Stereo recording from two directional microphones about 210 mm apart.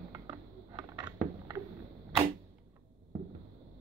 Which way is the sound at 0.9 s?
20° right (ahead or behind).